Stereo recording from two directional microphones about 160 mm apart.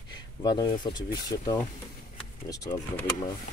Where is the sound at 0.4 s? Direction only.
25° left (ahead or behind).